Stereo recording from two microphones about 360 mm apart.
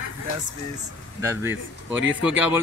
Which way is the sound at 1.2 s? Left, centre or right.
Centre.